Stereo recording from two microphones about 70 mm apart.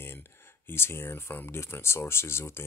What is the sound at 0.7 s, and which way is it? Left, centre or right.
Speech, left.